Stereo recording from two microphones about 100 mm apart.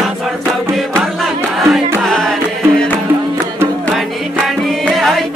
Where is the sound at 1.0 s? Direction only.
Centre (ahead or behind).